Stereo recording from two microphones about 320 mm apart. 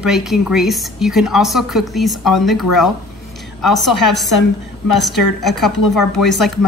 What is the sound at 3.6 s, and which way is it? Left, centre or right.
Speech, centre.